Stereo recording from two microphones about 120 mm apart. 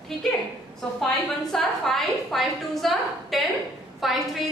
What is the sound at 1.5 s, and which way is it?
A woman's voice, 5° left (ahead or behind).